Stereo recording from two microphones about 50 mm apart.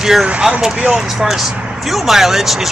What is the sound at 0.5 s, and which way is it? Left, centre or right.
Speech, centre.